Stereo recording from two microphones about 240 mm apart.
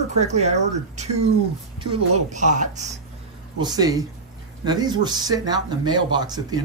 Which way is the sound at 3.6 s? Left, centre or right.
Centre.